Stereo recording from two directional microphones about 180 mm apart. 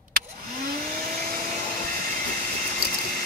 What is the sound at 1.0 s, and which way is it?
Vacuum cleaner, 55° right (ahead or behind).